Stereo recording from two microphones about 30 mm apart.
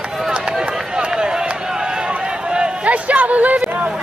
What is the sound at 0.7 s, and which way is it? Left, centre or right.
Run, right.